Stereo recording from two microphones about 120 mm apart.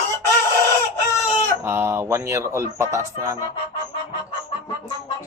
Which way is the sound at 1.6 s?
20° right (ahead or behind).